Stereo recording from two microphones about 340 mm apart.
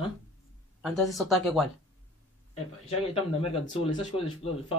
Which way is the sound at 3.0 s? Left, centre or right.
Centre.